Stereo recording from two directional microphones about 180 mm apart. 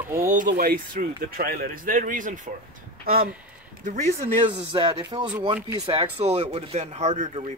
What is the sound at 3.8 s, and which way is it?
Speech, 45° right (ahead or behind).